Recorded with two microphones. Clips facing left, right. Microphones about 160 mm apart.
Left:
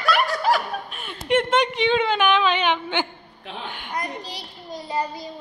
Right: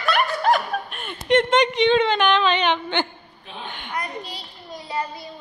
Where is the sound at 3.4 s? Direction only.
90° left.